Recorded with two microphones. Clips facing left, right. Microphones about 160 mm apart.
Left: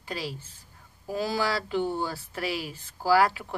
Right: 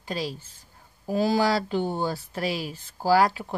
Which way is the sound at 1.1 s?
35° right (ahead or behind).